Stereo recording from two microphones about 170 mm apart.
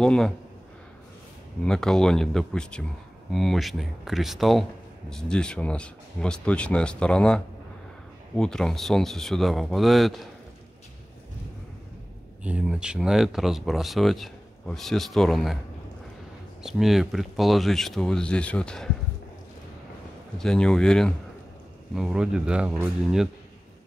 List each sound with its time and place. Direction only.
0.0 s speech: 5° left (ahead or behind)
1.7 s speech: 5° left (ahead or behind)
12.4 s speech: 5° right (ahead or behind)
16.6 s speech: centre (ahead or behind)
20.3 s speech: 5° left (ahead or behind)